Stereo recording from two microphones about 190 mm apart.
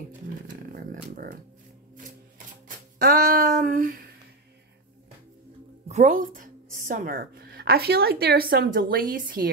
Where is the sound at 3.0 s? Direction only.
50° right (ahead or behind).